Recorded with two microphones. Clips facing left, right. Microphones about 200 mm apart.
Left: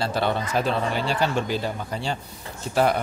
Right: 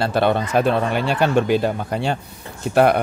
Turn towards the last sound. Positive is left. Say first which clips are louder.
# right 6 dB
turn(degrees=-60)  # may be behind; listen again after turning